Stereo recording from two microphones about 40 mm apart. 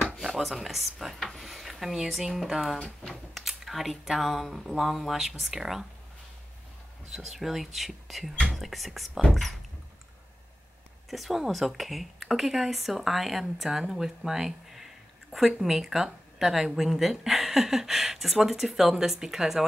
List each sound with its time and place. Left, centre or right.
0.0 s a sound: centre
0.4 s speech: centre
1.2 s a sound: centre
2.0 s speech: centre
7.2 s speech: centre
11.1 s speech: centre